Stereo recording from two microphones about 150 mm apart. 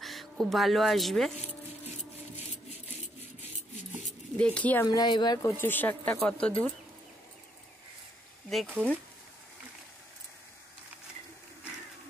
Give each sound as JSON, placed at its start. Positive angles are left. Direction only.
{"t": 0.0, "sound": "speech", "side_deg": 0}
{"t": 4.4, "sound": "speech", "side_deg": 10}
{"t": 4.8, "sound": "speech", "side_deg": 30}
{"t": 5.6, "sound": "speech", "side_deg": 15}
{"t": 8.5, "sound": "speech", "side_deg": 0}